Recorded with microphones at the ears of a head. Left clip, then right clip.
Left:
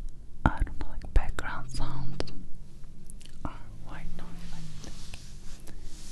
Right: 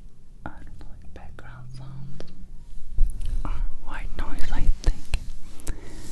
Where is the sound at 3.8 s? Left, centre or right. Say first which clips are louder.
Right 11 dB; right.